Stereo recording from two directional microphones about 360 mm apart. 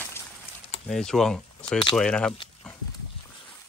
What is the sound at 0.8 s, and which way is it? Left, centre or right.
Speech, centre.